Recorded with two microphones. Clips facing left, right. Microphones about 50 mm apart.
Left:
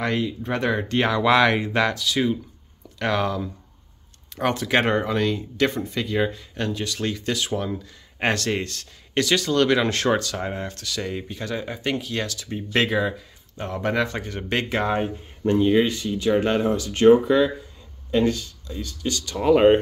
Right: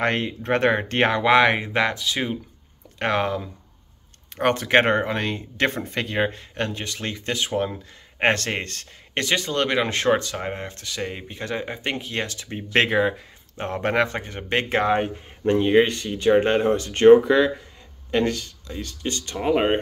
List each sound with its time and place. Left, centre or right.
0.0 s speech: right
1.2 s speech: right
17.2 s speech: right
19.5 s speech: centre